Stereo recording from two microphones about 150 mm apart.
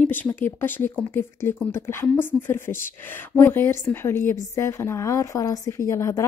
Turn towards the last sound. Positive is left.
turn(degrees=20)  # may be behind; listen again after turning